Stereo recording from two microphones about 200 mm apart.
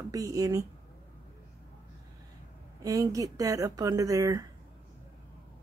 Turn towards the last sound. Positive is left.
turn(degrees=-15)  # may be behind; listen again after turning